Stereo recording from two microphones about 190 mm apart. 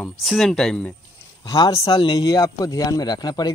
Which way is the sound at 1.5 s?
20° left (ahead or behind).